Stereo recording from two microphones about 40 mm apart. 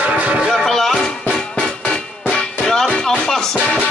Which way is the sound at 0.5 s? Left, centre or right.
Centre.